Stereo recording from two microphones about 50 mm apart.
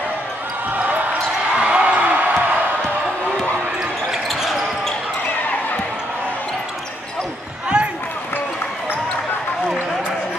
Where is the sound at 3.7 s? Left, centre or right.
Centre.